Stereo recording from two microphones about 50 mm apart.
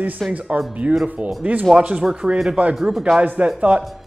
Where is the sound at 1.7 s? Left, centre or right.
Centre.